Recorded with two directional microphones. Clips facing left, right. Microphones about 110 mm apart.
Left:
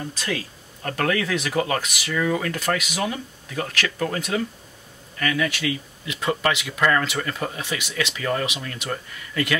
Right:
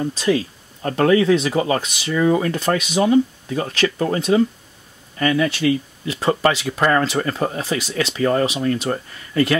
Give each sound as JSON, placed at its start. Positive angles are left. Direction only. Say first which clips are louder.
{"t": 0.0, "sound": "speech", "louder": "right 10 dB", "side_deg": -25}